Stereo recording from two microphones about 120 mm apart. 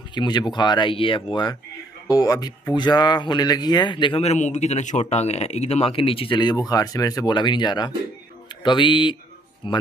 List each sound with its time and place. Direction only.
0.1 s speech: 40° left (ahead or behind)
4.2 s speech: 70° left (ahead or behind); by 9.8 s 45° left (ahead or behind)